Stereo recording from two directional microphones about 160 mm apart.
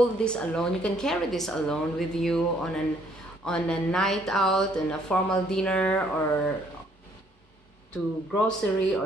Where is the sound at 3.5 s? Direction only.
5° left (ahead or behind).